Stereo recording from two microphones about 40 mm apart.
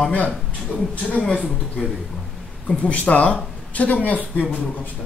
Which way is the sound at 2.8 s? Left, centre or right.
Left.